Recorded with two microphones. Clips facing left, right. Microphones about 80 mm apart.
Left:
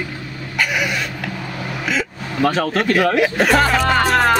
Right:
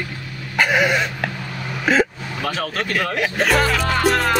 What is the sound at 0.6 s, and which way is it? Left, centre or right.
Dog, right.